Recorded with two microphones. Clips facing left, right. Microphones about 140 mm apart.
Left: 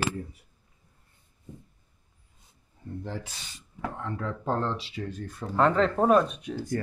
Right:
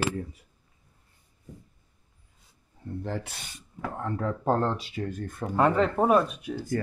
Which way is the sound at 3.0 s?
65° right (ahead or behind).